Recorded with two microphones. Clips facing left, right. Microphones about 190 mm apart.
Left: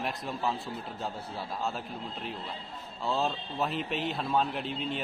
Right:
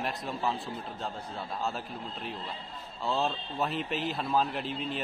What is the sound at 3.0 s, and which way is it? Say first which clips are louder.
Speech: even; centre (ahead or behind).